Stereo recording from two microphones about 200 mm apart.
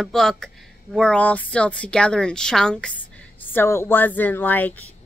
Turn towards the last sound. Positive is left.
turn(degrees=10)  # may be behind; listen again after turning